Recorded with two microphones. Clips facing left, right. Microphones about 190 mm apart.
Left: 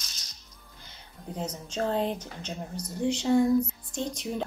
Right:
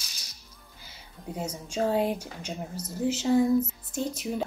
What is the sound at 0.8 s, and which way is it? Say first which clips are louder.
Speech: right 2 dB; 10° right (ahead or behind).